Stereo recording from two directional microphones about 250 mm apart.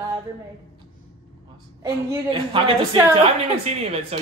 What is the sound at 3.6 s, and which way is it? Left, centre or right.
Speech, right.